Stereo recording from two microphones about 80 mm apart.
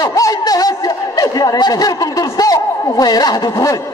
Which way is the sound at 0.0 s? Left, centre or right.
Left.